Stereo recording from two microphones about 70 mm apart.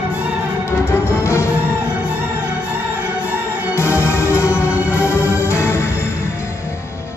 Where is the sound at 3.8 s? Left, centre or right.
Left.